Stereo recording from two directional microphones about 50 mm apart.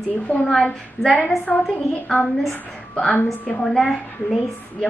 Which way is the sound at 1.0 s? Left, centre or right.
Left.